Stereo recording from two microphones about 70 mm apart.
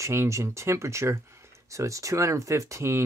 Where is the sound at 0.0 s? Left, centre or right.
Right.